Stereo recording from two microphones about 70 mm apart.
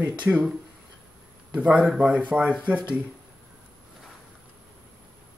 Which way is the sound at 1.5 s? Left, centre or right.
Centre.